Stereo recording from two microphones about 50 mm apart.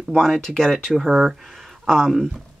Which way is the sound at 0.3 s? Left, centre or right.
Centre.